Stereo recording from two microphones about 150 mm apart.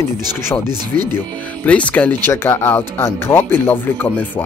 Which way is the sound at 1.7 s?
10° left (ahead or behind).